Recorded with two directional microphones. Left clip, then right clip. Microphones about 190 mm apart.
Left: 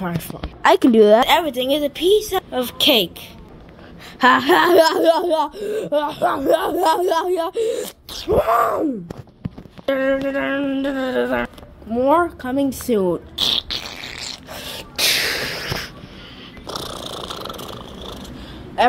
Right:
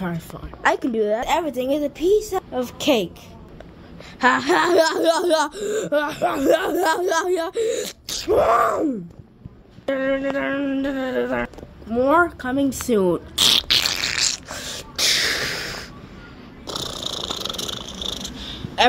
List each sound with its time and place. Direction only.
0.6 s speech: 30° left (ahead or behind)
1.2 s speech: 5° right (ahead or behind)
4.2 s speech: 15° left (ahead or behind)
9.8 s speech: 10° left (ahead or behind)
13.1 s a sound: 15° right (ahead or behind)
14.3 s gasp: centre (ahead or behind)
16.6 s purr: 5° left (ahead or behind)